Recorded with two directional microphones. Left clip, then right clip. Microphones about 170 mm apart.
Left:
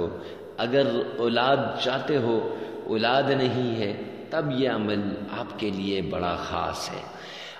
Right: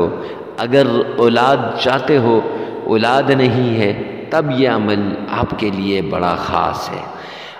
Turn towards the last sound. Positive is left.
turn(degrees=-45)  # may be behind; listen again after turning